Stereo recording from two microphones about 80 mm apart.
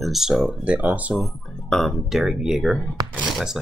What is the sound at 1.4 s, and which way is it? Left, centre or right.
Music, centre.